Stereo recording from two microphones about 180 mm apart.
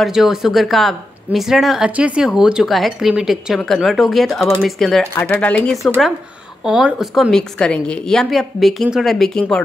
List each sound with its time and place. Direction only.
0.0 s a woman's voice: centre (ahead or behind)